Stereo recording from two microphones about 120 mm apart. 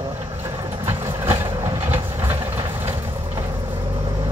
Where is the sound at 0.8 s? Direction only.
20° right (ahead or behind).